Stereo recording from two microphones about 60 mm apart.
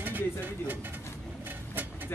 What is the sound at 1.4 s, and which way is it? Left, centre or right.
Bird, right.